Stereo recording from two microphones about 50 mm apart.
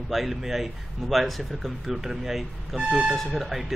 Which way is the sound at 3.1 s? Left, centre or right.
Centre.